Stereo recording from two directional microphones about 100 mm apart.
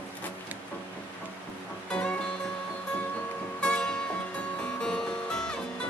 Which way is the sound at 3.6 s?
10° left (ahead or behind).